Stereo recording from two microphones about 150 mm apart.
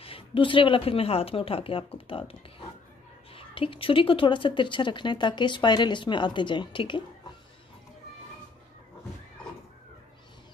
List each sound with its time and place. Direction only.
0.0 s a woman's voice: 35° left (ahead or behind)
3.3 s a woman's voice: 35° left (ahead or behind)